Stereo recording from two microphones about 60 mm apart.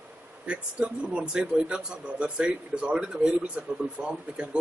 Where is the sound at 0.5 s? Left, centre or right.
Centre.